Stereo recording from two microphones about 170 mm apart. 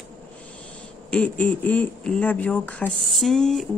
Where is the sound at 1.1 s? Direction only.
5° left (ahead or behind).